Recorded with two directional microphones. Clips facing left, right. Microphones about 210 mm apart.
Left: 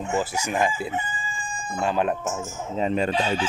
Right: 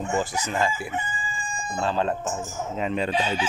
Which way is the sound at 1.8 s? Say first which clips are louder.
Left 1 dB; 15° left (ahead or behind).